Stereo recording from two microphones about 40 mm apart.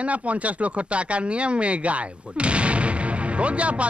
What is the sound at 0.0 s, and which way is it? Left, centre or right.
Speech, right.